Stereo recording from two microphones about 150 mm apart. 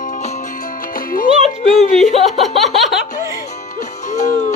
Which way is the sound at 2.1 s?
Centre (ahead or behind).